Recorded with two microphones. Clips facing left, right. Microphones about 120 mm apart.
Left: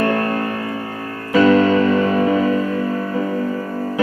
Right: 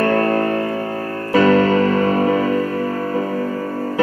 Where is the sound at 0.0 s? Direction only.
35° right (ahead or behind).